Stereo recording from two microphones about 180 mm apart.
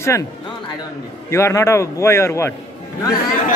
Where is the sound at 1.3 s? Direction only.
15° left (ahead or behind).